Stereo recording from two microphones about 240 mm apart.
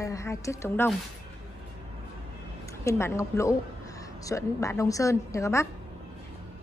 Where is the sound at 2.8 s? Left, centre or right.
Centre.